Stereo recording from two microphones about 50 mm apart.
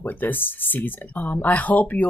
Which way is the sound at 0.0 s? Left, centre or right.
Left.